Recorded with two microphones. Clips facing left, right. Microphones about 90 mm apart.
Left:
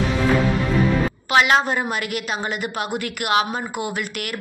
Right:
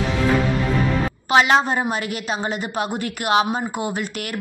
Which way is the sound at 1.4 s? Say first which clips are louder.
Even; 30° right (ahead or behind).